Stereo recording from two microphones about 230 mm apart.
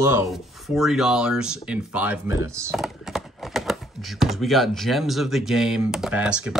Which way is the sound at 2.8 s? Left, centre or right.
Centre.